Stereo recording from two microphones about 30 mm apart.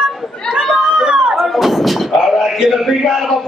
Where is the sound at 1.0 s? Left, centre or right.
Right.